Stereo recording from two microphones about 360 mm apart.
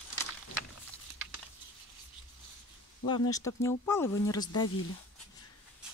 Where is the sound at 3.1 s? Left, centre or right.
Centre.